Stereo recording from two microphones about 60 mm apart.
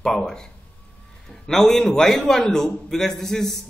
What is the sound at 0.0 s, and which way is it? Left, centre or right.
A man's voice, centre.